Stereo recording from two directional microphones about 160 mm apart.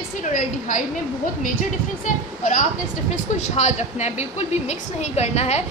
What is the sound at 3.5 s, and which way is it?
A woman's voice, 45° left (ahead or behind).